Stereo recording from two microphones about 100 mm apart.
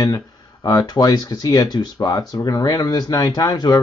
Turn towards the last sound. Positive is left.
turn(degrees=40)  # may be behind; listen again after turning